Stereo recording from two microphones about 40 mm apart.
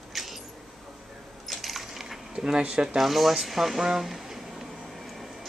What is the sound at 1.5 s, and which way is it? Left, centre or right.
Coin, centre.